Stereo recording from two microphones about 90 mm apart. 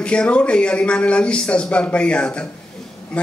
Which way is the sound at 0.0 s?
10° left (ahead or behind).